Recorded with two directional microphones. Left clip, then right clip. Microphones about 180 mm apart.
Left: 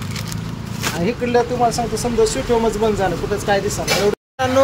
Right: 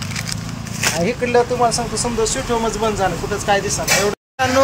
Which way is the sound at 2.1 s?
5° left (ahead or behind).